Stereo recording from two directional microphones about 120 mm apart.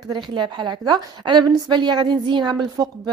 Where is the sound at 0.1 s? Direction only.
40° right (ahead or behind).